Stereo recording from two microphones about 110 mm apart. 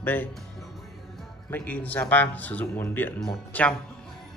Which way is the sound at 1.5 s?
15° left (ahead or behind).